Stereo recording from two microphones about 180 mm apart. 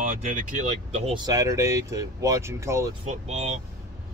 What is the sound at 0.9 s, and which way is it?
Speech, 35° right (ahead or behind).